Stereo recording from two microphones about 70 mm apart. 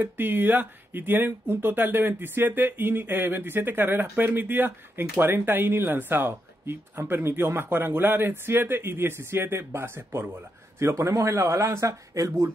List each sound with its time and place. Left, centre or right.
0.0 s speech: right